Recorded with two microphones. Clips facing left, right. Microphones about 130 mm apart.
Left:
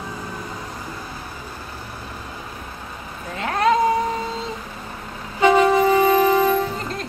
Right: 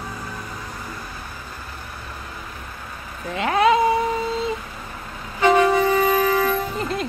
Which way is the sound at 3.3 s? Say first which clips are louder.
Right 2 dB; 5° right (ahead or behind).